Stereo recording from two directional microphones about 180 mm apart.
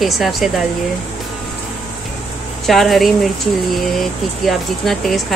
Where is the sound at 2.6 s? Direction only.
Centre (ahead or behind).